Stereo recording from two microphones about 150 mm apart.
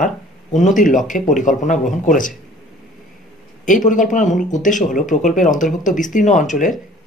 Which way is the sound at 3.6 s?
60° left (ahead or behind).